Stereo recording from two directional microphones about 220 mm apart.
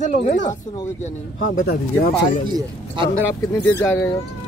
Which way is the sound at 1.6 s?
40° left (ahead or behind).